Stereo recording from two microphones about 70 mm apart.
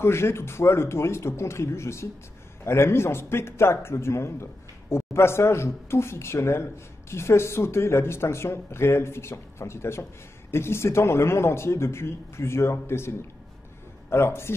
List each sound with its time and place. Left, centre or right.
0.0 s a man's voice: left
14.1 s a man's voice: left